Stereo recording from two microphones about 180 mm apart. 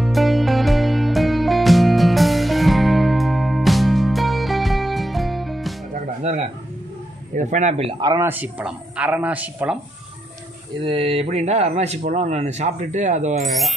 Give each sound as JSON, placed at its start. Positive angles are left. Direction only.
{"t": 0.0, "sound": "music", "side_deg": 0}
{"t": 6.2, "sound": "a sound", "side_deg": -35}
{"t": 7.3, "sound": "speech", "side_deg": -40}
{"t": 8.3, "sound": "speech", "side_deg": -10}
{"t": 10.8, "sound": "speech", "side_deg": -30}
{"t": 13.4, "sound": "speech", "side_deg": 0}